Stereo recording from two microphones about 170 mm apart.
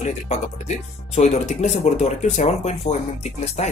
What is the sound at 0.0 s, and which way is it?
Speech, 40° left (ahead or behind).